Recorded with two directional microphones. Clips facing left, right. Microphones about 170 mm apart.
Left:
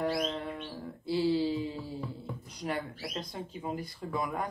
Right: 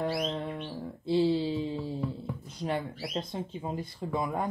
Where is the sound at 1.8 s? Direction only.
Centre (ahead or behind).